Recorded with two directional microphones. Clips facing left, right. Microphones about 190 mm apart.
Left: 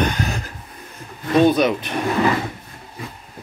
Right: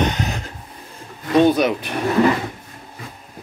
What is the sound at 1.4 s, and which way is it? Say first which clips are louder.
Speech: even; 10° right (ahead or behind).